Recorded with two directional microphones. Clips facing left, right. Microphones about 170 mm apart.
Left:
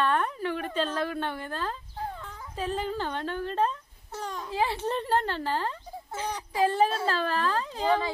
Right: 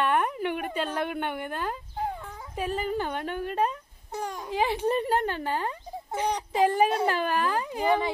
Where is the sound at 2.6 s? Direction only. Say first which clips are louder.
Right 2 dB; 10° right (ahead or behind).